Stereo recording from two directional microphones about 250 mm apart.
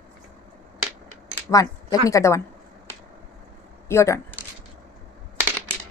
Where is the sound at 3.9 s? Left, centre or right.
Centre.